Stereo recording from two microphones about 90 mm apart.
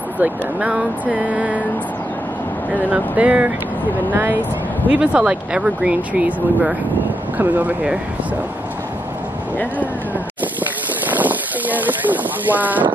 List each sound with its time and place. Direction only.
0.2 s speech: 15° right (ahead or behind)
2.7 s speech: 15° right (ahead or behind)
11.1 s speech: 20° right (ahead or behind)